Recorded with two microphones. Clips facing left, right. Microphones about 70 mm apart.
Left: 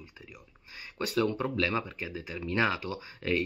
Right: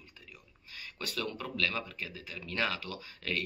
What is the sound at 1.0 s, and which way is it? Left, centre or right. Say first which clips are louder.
Speech: left 9 dB; left.